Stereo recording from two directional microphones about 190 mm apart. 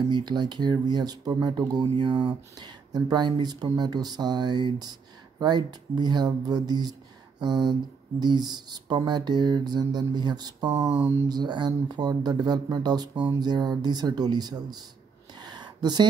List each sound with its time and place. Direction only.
0.1 s speech: 25° right (ahead or behind)
10.9 s speech: 10° right (ahead or behind)
15.3 s a sound: 20° right (ahead or behind)